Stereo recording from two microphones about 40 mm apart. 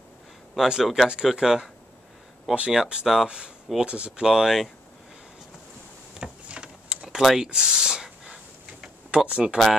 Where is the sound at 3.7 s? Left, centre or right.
Right.